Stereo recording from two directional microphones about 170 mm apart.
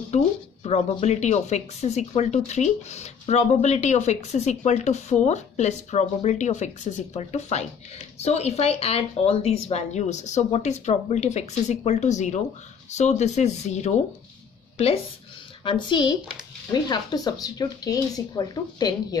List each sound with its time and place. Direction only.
0.1 s speech: 40° left (ahead or behind)
15.6 s speech: 25° left (ahead or behind)